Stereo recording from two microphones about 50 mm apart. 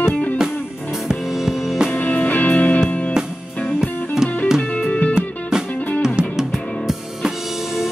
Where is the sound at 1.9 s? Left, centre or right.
Left.